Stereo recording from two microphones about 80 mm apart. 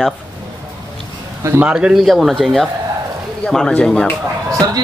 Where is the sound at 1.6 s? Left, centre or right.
Centre.